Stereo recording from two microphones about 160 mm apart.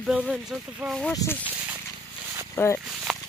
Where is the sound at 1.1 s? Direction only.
15° left (ahead or behind).